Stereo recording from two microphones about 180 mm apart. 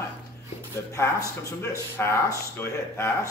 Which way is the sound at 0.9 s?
15° left (ahead or behind).